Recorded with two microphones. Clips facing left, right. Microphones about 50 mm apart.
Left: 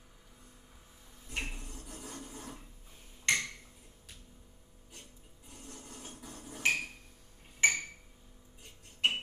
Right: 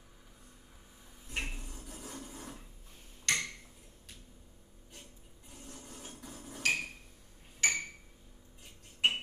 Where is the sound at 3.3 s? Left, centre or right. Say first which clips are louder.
Left 2 dB; left.